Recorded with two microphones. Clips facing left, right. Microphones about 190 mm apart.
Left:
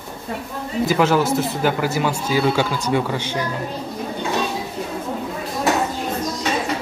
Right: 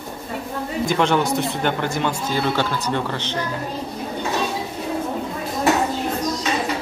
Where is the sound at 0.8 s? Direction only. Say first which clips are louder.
Left 2 dB; 5° left (ahead or behind).